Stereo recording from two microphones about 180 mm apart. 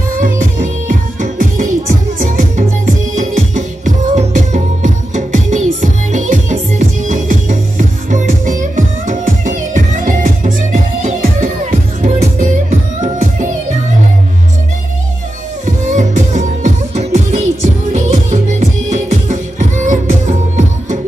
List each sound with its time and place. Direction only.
0.1 s music: 50° right (ahead or behind)
15.6 s music: 45° right (ahead or behind)